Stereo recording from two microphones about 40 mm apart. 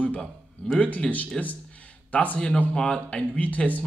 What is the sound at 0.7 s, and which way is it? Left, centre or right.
Speech, left.